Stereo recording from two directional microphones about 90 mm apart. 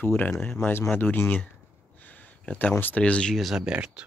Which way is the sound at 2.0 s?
20° left (ahead or behind).